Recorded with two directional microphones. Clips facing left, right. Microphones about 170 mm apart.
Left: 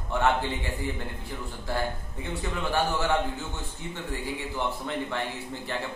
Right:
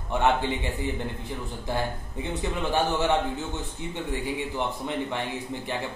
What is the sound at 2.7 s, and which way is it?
Speech, 20° right (ahead or behind).